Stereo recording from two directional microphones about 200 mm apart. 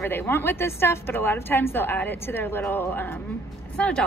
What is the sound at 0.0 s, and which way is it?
A woman's voice, 10° left (ahead or behind).